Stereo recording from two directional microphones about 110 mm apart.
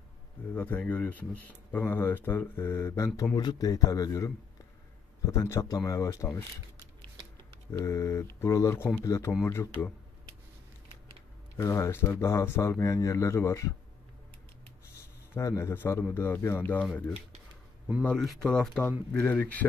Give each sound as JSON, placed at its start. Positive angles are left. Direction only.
{"t": 0.6, "sound": "speech", "side_deg": 15}
{"t": 7.7, "sound": "speech", "side_deg": 25}
{"t": 11.5, "sound": "speech", "side_deg": 25}
{"t": 15.3, "sound": "speech", "side_deg": 25}
{"t": 18.0, "sound": "speech", "side_deg": 5}